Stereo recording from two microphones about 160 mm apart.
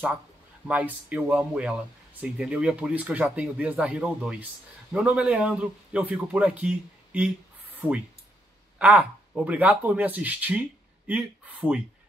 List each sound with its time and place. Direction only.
0.7 s speech: 10° right (ahead or behind)
8.7 s speech: 10° right (ahead or behind)